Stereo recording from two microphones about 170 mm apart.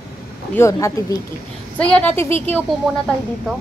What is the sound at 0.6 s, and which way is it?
Speech, 15° left (ahead or behind).